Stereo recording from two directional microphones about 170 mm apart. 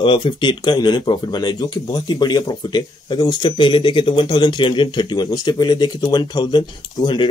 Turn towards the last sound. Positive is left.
turn(degrees=25)  # may be behind; listen again after turning